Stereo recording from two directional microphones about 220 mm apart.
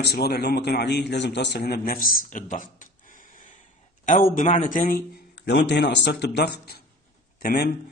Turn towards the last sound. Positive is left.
turn(degrees=45)  # may be behind; listen again after turning